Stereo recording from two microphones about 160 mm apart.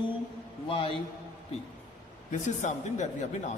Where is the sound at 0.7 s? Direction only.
35° left (ahead or behind).